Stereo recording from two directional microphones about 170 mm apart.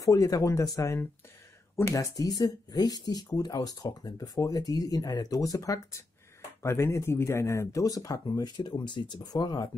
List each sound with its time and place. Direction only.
0.0 s speech: 20° left (ahead or behind)